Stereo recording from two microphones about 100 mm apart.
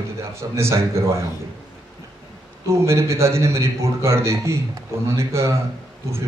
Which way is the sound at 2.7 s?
30° right (ahead or behind).